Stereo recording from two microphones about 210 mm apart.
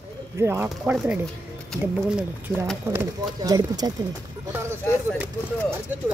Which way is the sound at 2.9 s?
20° right (ahead or behind).